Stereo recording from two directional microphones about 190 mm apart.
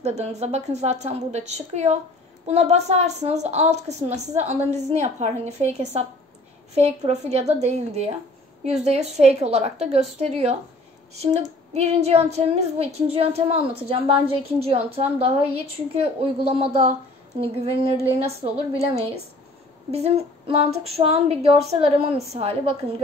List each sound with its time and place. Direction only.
0.0 s a woman's voice: 35° right (ahead or behind)
11.7 s a woman's voice: 35° right (ahead or behind)